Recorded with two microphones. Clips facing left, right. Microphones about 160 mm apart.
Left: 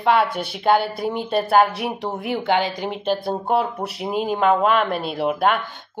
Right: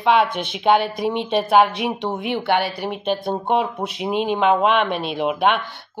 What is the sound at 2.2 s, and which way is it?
Speech, 80° right.